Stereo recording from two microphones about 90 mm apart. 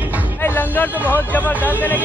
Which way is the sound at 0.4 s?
20° left (ahead or behind).